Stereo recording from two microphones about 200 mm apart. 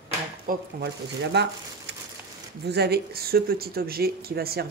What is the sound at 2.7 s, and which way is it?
Speech, 55° right (ahead or behind).